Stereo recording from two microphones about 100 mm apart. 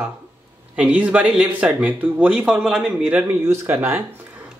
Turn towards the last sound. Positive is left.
turn(degrees=-25)  # may be behind; listen again after turning